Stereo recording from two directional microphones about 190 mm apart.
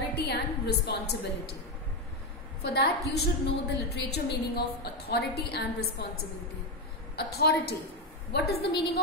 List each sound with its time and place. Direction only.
0.1 s a woman's voice: 60° left (ahead or behind)
2.6 s a woman's voice: 60° left (ahead or behind)
7.2 s a woman's voice: 55° left (ahead or behind)